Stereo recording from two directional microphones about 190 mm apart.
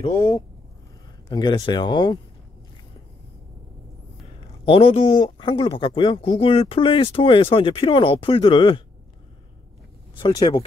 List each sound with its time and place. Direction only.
0.0 s speech: 25° left (ahead or behind)
4.6 s speech: 30° left (ahead or behind)
10.1 s speech: 25° left (ahead or behind)